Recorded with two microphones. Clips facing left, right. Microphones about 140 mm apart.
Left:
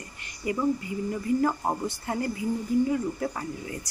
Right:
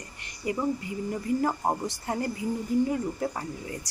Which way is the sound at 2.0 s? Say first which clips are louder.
Left 1 dB; 30° right (ahead or behind).